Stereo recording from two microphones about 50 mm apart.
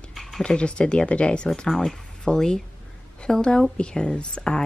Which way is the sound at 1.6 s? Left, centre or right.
Centre.